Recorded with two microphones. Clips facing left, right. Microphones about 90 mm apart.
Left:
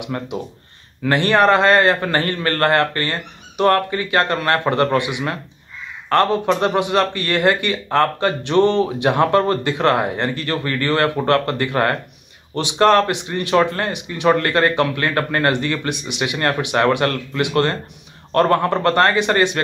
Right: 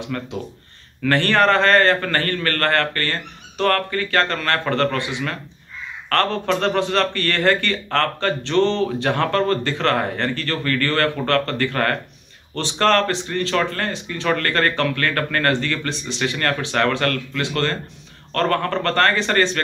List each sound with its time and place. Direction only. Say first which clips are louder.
0.0 s a man's voice: left 2 dB; 15° left (ahead or behind)